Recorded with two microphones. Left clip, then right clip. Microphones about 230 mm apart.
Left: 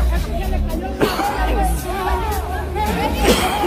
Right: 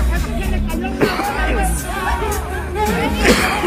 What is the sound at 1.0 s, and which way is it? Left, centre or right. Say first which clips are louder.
Music: even; centre.